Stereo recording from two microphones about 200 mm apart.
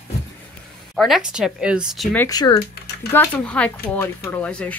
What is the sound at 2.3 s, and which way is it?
Speech, 20° left (ahead or behind).